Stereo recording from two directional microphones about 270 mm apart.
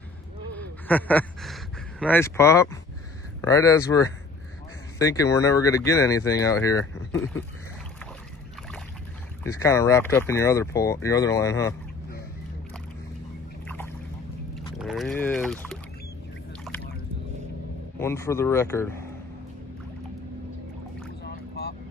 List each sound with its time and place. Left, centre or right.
0.6 s speech: centre
9.4 s speech: centre
14.8 s boat: centre
17.9 s speech: centre
21.2 s boat: left